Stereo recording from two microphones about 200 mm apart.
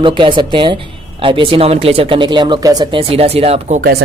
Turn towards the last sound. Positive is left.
turn(degrees=-35)  # may be behind; listen again after turning